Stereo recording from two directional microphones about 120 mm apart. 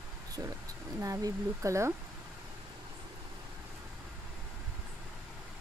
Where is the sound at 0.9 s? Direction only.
25° right (ahead or behind).